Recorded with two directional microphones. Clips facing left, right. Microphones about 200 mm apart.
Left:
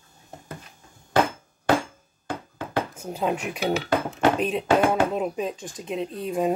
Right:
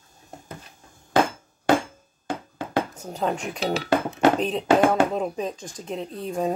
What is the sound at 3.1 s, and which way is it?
Speech, 5° left (ahead or behind).